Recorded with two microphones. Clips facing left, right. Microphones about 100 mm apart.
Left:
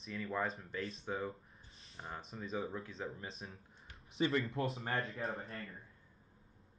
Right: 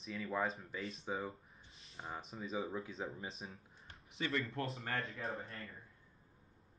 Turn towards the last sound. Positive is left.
turn(degrees=0)  # may be behind; listen again after turning